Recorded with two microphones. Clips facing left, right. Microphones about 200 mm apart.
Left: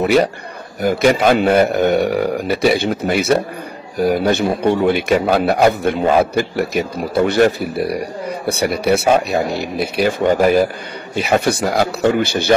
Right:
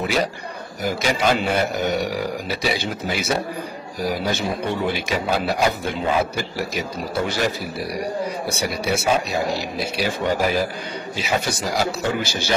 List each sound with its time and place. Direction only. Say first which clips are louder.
0.0 s a man's voice: left 8 dB; 60° left (ahead or behind)